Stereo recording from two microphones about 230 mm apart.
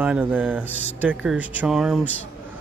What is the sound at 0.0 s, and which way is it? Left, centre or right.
Speech, centre.